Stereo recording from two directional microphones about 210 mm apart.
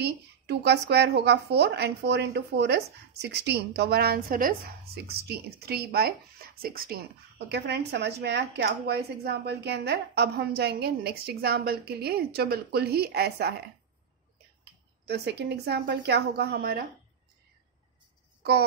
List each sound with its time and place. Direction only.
0.0 s speech: 55° right (ahead or behind)
14.6 s speech: 50° right (ahead or behind)